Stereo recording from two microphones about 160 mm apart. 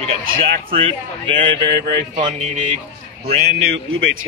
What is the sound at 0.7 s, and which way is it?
Speech, 35° right (ahead or behind).